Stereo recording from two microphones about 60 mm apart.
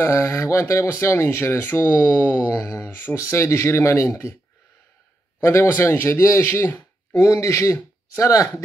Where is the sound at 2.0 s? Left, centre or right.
Left.